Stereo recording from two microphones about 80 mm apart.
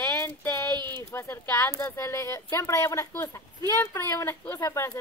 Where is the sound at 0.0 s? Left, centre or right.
Left.